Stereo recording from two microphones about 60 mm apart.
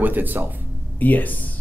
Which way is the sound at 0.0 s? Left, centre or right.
Right.